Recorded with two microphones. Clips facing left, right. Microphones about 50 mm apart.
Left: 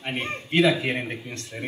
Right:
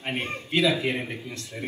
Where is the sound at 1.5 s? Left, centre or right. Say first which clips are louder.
Even; left.